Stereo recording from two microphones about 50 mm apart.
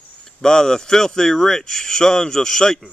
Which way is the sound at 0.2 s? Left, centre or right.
Centre.